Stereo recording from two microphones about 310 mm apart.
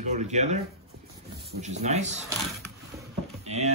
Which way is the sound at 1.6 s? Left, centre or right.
Right.